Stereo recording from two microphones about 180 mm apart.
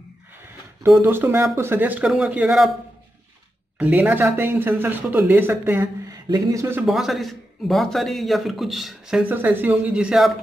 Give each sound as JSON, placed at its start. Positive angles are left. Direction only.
{"t": 1.0, "sound": "speech", "side_deg": -10}
{"t": 3.7, "sound": "speech", "side_deg": -10}
{"t": 6.9, "sound": "a man's voice", "side_deg": 0}